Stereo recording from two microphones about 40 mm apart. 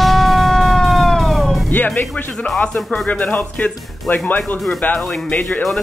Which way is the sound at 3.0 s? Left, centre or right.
Left.